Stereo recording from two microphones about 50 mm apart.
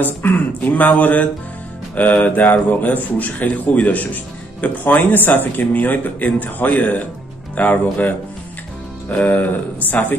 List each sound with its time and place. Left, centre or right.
0.0 s speech: left
9.1 s speech: left